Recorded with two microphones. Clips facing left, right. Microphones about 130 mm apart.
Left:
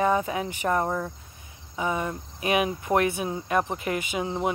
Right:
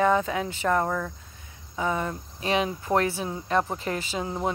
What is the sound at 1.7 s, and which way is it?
Speech, 15° left (ahead or behind).